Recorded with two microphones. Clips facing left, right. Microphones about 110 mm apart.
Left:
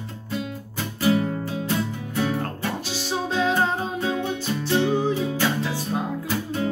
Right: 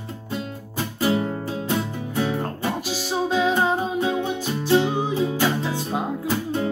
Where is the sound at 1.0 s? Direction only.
25° right (ahead or behind).